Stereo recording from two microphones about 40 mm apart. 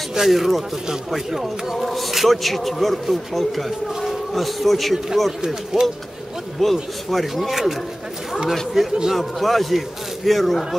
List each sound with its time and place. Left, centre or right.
0.1 s a man's voice: centre
5.4 s speech: centre
6.6 s a man's voice: centre
8.8 s speech: centre
9.1 s a man's voice: centre